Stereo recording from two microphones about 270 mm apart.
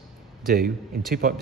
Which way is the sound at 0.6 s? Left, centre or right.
Right.